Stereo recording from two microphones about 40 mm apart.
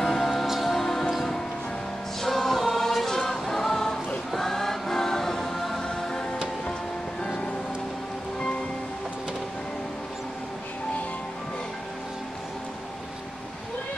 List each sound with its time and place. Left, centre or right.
0.0 s music: centre
2.2 s choir: centre
5.9 s music: centre